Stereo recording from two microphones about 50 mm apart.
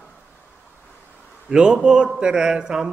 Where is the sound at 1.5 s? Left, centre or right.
Centre.